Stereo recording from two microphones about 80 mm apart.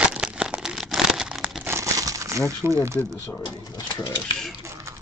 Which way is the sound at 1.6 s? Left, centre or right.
Right.